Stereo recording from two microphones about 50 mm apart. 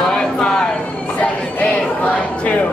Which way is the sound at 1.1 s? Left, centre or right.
Left.